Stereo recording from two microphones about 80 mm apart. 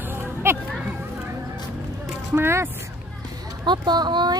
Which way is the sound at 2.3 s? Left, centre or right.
Right.